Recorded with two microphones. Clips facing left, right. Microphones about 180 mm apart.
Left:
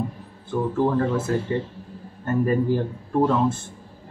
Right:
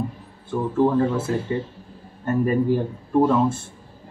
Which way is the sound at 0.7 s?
5° right (ahead or behind).